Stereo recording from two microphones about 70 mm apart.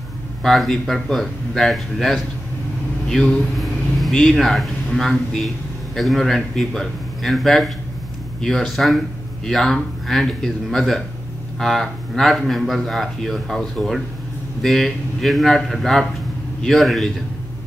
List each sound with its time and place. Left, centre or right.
0.4 s speech: centre
3.1 s vehicle: centre
4.1 s speech: centre